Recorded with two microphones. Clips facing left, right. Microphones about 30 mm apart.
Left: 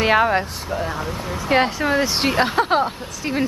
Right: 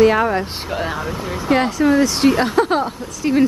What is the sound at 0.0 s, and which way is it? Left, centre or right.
Speech, left.